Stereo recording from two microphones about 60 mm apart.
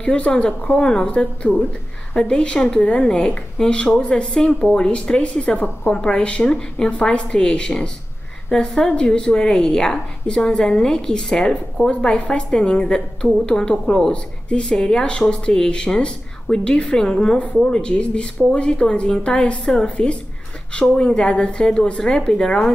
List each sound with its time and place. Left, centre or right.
0.0 s speech: centre